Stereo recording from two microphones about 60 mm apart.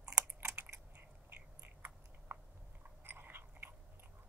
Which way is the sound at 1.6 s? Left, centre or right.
Right.